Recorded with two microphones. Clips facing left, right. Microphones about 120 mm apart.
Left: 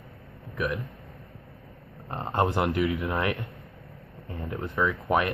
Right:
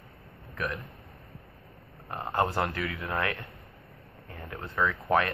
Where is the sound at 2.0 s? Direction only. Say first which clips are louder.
Left 2 dB; 25° left (ahead or behind).